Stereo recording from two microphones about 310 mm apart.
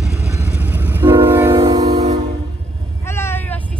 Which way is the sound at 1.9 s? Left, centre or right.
Right.